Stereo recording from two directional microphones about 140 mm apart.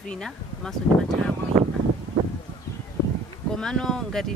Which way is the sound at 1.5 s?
20° right (ahead or behind).